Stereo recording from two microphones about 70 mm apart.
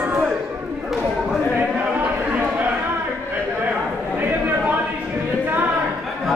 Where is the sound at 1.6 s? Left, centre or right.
Right.